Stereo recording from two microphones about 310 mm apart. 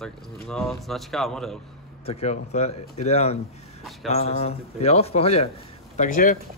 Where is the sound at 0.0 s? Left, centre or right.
Centre.